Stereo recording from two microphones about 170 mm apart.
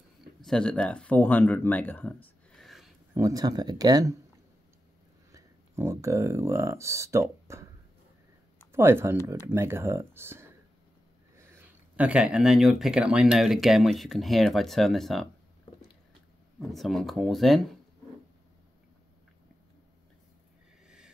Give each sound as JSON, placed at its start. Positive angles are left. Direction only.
{"t": 0.4, "sound": "speech", "side_deg": 5}
{"t": 3.2, "sound": "speech", "side_deg": -20}
{"t": 5.3, "sound": "speech", "side_deg": -15}
{"t": 8.7, "sound": "speech", "side_deg": -15}
{"t": 16.5, "sound": "speech", "side_deg": 0}